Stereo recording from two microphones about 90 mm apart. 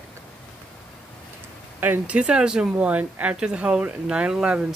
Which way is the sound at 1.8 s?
20° right (ahead or behind).